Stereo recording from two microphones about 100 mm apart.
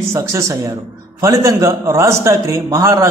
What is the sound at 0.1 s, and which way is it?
A man's voice, 30° right (ahead or behind).